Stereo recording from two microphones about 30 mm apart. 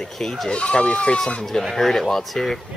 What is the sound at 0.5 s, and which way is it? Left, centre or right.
Speech, left.